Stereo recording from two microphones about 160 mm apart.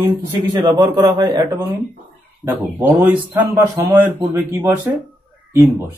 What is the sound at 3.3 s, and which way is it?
Speech, 25° right (ahead or behind).